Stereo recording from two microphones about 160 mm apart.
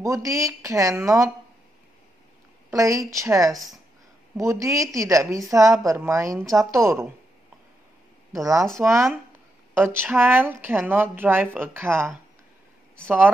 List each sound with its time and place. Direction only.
0.0 s a woman's voice: 20° right (ahead or behind)
2.7 s a woman's voice: 20° right (ahead or behind)
8.3 s speech: 20° right (ahead or behind)